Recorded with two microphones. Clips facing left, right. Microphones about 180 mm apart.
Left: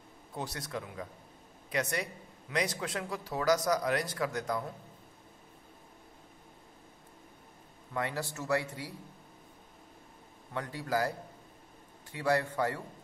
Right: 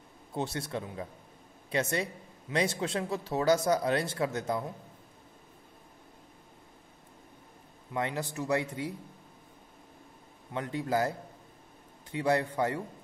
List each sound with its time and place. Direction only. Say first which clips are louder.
0.3 s a man's voice: right 5 dB; 25° right (ahead or behind)
7.9 s a man's voice: right 2 dB; 20° right (ahead or behind)
10.5 s a man's voice: right 3 dB; 20° right (ahead or behind)